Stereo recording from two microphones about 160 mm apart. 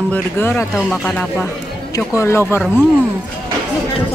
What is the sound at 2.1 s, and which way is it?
Speech, 15° left (ahead or behind).